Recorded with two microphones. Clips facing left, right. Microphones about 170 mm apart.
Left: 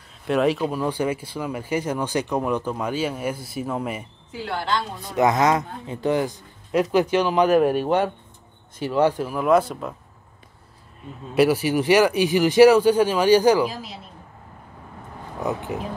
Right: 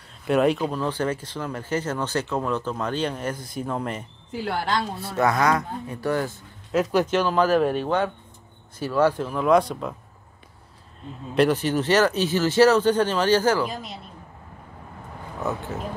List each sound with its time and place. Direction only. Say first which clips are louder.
0.3 s speech: even; centre (ahead or behind)
5.0 s speech: left 3 dB; 20° left (ahead or behind)
6.7 s speech: left 2 dB; centre (ahead or behind)
7.1 s speech: left 2 dB; 15° left (ahead or behind)
11.3 s speech: left 2 dB; 10° left (ahead or behind)
13.7 s speech: left 1 dB; centre (ahead or behind)
15.4 s speech: left 2 dB; 15° left (ahead or behind)